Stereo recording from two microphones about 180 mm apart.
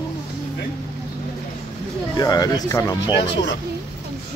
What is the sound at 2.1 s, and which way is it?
Speech, 20° left (ahead or behind).